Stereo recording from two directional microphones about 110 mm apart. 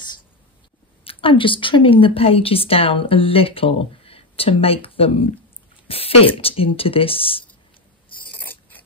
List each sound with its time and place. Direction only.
1.0 s a woman's voice: 50° left (ahead or behind)
8.4 s mechanisms: 15° left (ahead or behind)